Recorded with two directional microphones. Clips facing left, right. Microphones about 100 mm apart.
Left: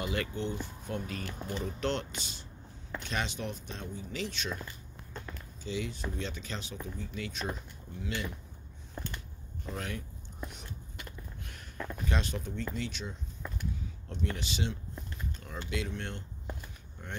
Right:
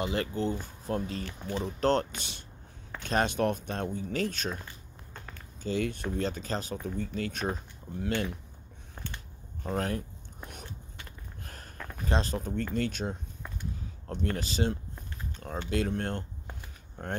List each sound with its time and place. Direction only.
0.0 s speech: 30° right (ahead or behind)
5.6 s speech: 50° right (ahead or behind)
9.6 s speech: 45° right (ahead or behind)
11.4 s speech: 40° right (ahead or behind)